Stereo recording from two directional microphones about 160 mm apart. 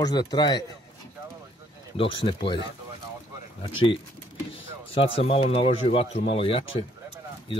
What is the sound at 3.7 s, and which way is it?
Speech, 35° left (ahead or behind).